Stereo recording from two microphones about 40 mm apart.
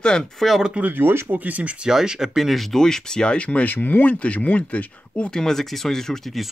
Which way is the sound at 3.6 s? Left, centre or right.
Left.